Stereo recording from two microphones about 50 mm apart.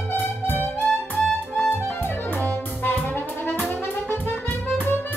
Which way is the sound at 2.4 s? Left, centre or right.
Left.